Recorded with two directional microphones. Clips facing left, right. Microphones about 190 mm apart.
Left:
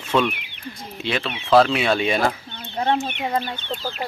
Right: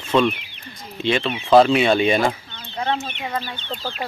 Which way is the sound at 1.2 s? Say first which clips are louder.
Right 5 dB; 15° right (ahead or behind).